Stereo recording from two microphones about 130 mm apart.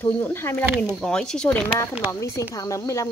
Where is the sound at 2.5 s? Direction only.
25° left (ahead or behind).